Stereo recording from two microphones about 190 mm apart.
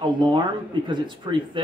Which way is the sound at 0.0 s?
25° right (ahead or behind).